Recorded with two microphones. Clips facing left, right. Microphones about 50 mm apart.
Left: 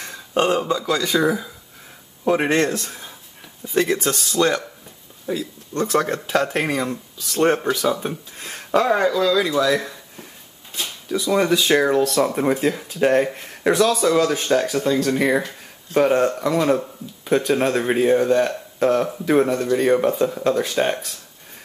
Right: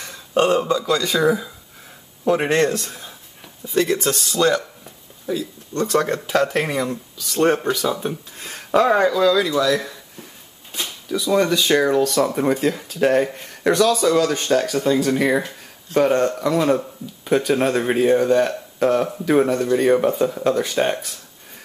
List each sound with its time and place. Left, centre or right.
0.0 s speech: centre
2.2 s speech: centre
4.0 s speech: centre
5.8 s speech: centre
8.4 s a sound: centre
8.9 s speech: centre
11.1 s speech: centre